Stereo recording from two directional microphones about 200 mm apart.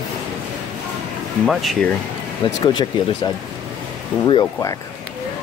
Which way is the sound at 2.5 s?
20° left (ahead or behind).